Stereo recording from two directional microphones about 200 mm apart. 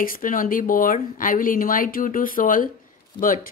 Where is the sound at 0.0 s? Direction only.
45° left (ahead or behind).